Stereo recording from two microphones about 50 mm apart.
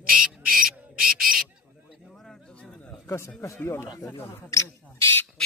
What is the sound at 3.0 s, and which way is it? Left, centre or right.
Speech, left.